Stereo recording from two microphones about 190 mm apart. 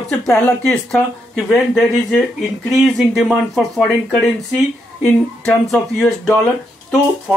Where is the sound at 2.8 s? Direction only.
Centre (ahead or behind).